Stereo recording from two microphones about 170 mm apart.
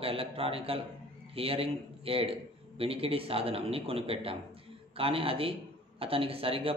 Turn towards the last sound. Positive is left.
turn(degrees=-35)  # may be behind; listen again after turning